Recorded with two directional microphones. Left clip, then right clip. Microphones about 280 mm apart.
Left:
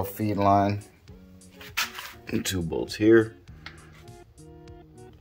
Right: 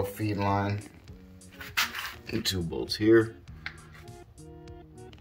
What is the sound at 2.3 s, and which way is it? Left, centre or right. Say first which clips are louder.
Speech: left 3 dB; centre.